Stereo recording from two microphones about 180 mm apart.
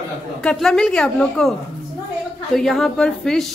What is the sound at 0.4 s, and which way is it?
A woman's voice, 5° left (ahead or behind).